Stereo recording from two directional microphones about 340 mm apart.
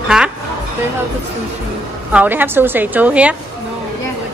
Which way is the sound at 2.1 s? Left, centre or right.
Centre.